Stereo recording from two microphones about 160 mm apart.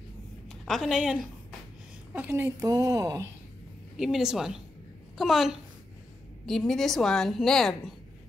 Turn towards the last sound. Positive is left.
turn(degrees=0)  # may be behind; listen again after turning